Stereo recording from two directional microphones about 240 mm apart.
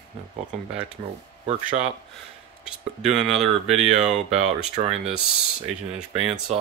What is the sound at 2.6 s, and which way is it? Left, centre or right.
Speech, centre.